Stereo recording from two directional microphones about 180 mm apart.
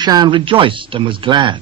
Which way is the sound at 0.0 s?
25° right (ahead or behind).